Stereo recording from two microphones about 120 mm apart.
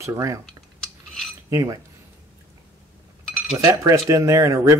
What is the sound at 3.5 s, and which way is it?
Speech, 30° right (ahead or behind).